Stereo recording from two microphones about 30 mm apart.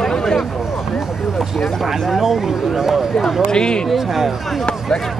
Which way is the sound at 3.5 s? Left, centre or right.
Left.